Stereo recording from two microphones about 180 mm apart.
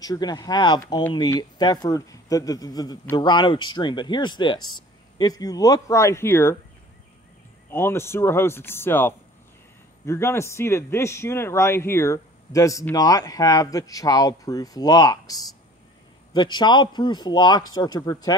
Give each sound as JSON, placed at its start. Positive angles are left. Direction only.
{"t": 0.0, "sound": "speech", "side_deg": 20}
{"t": 7.7, "sound": "speech", "side_deg": 15}